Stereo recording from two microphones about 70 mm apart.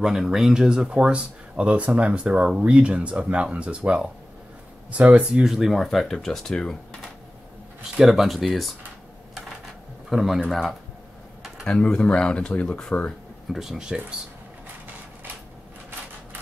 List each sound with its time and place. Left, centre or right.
0.0 s speech: centre
7.9 s speech: centre
10.0 s speech: centre
11.6 s speech: centre
13.5 s speech: centre